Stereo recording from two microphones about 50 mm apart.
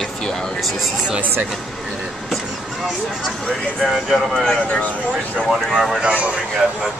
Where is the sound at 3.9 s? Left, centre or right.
Centre.